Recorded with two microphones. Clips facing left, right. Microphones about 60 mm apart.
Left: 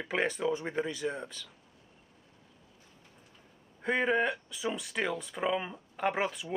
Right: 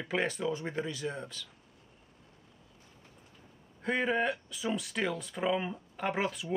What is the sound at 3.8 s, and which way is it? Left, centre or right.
Speech, centre.